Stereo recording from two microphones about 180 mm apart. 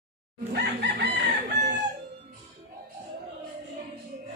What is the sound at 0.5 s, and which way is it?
Chicken, 70° right (ahead or behind).